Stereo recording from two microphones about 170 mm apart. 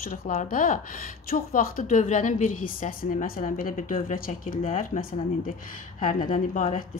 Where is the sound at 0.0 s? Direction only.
55° left (ahead or behind).